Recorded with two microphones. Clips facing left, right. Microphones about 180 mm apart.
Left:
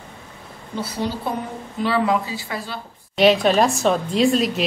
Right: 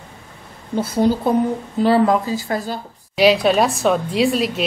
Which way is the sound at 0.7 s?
50° right (ahead or behind).